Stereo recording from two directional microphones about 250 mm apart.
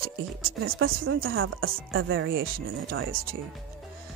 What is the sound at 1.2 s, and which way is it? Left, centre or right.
Speech, right.